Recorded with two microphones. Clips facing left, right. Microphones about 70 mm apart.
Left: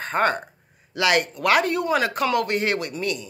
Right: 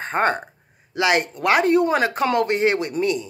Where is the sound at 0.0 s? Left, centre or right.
Right.